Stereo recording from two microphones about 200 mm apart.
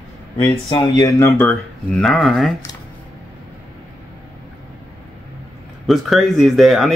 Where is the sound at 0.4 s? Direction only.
20° left (ahead or behind); by 2.5 s centre (ahead or behind).